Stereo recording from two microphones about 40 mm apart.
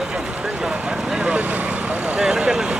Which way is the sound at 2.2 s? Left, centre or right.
Centre.